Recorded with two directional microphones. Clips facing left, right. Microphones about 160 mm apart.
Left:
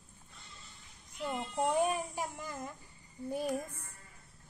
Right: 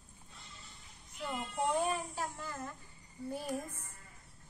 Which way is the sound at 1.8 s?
15° left (ahead or behind).